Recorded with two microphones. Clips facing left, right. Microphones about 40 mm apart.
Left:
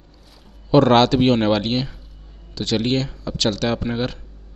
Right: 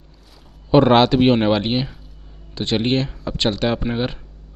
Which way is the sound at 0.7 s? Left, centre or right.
Centre.